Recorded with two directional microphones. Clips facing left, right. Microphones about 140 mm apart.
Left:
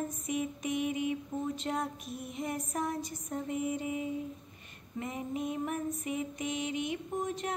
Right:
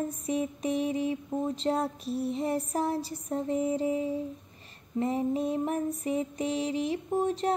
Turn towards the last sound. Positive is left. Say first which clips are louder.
# right 7 dB
turn(degrees=-35)  # may be behind; listen again after turning